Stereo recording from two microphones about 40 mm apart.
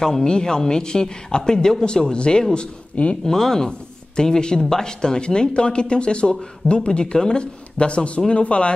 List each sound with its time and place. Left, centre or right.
0.0 s speech: centre
3.3 s speech: centre
7.7 s speech: left